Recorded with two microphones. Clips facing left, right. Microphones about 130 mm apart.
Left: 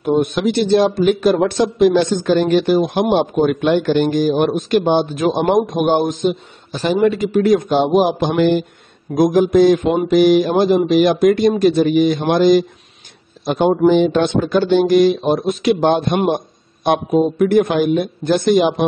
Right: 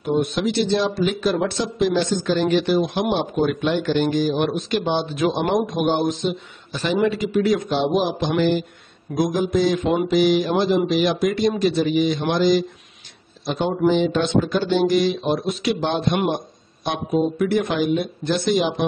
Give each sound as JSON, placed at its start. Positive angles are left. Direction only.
{"t": 0.0, "sound": "a man's voice", "side_deg": 55}